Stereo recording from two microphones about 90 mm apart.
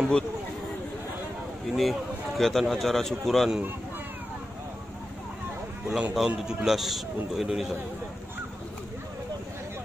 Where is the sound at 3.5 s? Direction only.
20° right (ahead or behind).